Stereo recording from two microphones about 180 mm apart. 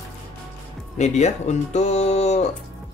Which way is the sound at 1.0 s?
40° left (ahead or behind).